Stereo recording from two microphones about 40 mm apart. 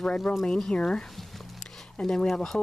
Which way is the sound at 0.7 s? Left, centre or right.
Left.